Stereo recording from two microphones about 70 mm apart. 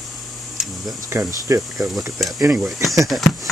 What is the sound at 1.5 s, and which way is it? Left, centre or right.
Speech, right.